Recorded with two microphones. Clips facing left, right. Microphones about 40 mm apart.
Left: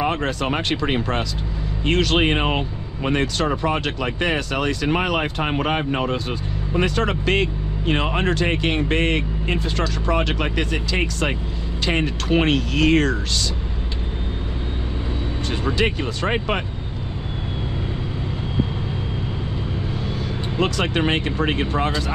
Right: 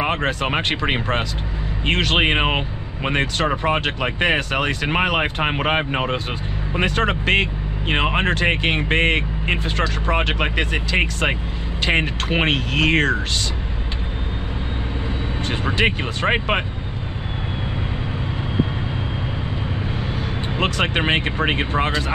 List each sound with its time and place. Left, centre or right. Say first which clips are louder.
0.0 s speech: right 1 dB; right
15.6 s speech: right 1 dB; right
20.5 s speech: even; right